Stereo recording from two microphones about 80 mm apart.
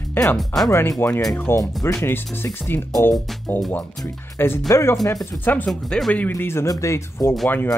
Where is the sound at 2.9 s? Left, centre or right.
Left.